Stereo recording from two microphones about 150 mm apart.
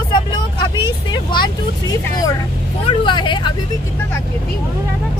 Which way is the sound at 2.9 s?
30° left (ahead or behind).